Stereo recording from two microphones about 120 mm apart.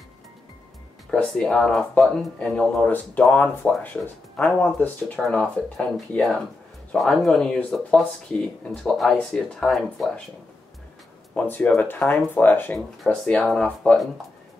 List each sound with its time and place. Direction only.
1.1 s speech: 5° left (ahead or behind)
11.3 s speech: 15° left (ahead or behind)
12.4 s speech: 15° left (ahead or behind)
12.7 s speech: 5° left (ahead or behind)